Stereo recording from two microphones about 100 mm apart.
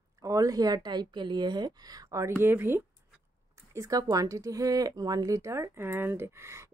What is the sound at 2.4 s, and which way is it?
Speech, 20° right (ahead or behind).